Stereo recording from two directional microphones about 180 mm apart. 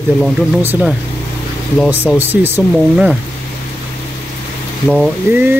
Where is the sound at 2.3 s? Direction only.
10° right (ahead or behind).